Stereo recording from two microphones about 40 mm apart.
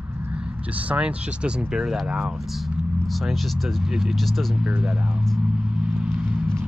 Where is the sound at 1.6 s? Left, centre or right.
Centre.